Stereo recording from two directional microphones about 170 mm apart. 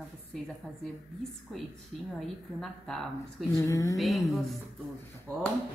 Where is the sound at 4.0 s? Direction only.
Centre (ahead or behind).